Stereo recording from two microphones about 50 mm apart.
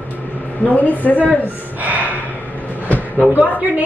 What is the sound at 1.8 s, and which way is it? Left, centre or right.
Gasp, right.